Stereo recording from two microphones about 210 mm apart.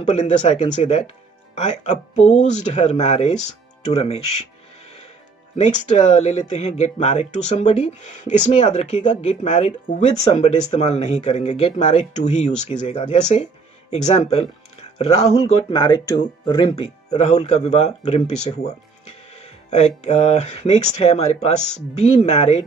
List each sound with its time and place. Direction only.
0.0 s speech: 35° left (ahead or behind)
5.6 s speech: 35° left (ahead or behind)
19.4 s speech: 30° left (ahead or behind)